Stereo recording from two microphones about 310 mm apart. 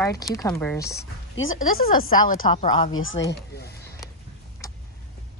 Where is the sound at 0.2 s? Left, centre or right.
Centre.